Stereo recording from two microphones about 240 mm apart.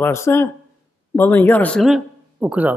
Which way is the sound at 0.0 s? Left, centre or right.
Centre.